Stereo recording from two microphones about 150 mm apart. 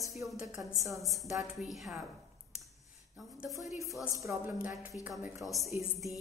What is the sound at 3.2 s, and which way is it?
Speech, centre (ahead or behind).